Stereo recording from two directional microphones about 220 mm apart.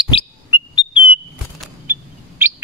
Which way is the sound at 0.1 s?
20° left (ahead or behind).